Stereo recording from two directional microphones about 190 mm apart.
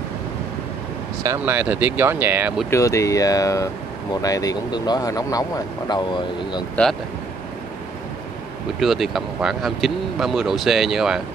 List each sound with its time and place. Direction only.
1.2 s speech: 15° right (ahead or behind)
2.7 s speech: 15° left (ahead or behind)
6.8 s speech: 10° left (ahead or behind)
8.7 s speech: centre (ahead or behind)